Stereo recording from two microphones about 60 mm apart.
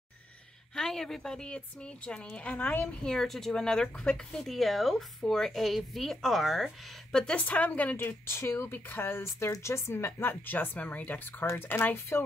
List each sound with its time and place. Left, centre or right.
0.7 s a woman's voice: centre
7.1 s speech: centre
7.3 s a woman's voice: left
8.4 s speech: left
9.6 s speech: left